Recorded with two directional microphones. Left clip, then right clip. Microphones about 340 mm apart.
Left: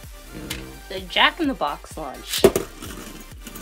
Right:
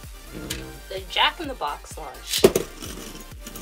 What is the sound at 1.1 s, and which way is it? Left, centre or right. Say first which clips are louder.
Speech: left 4 dB; left.